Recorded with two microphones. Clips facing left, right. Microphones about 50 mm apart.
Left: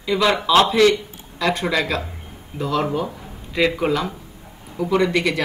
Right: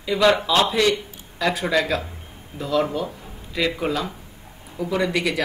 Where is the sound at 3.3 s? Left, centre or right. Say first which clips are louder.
Left 5 dB; centre.